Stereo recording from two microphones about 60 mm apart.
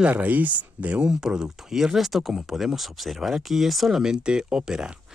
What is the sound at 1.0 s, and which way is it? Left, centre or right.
Speech, centre.